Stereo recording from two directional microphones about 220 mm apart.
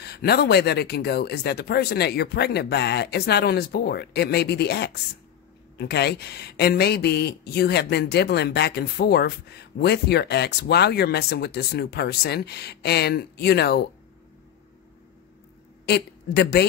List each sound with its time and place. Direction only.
0.0 s speech: 45° left (ahead or behind)
15.8 s a woman's voice: 50° left (ahead or behind)